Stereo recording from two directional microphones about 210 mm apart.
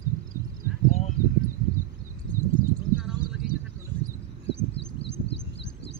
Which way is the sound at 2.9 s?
5° right (ahead or behind).